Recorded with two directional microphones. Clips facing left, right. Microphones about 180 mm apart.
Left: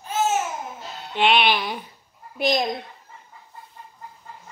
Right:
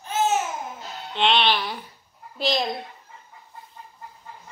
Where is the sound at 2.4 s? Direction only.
15° left (ahead or behind).